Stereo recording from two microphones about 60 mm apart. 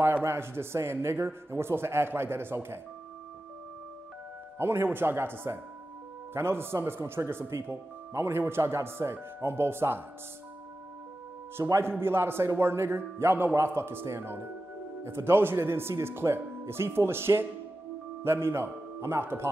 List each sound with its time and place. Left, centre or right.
0.2 s a man's voice: right
4.6 s speech: right
11.6 s a man's voice: right
12.0 s a man's voice: right